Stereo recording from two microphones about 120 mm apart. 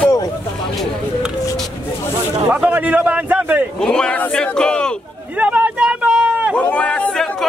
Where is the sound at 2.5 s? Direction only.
10° right (ahead or behind).